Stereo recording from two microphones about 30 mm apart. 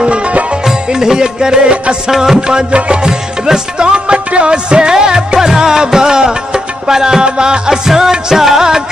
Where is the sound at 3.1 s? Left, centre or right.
Right.